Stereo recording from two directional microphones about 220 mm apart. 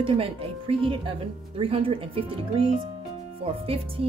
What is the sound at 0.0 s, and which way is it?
Speech, 25° right (ahead or behind).